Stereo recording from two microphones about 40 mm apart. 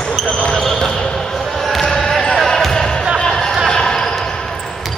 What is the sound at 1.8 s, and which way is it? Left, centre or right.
Basketball bounce, left.